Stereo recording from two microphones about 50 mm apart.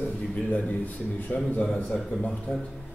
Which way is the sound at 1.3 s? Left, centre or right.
Left.